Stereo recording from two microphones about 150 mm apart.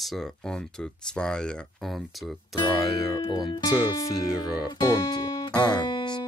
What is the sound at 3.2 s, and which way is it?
Speech, 30° left (ahead or behind).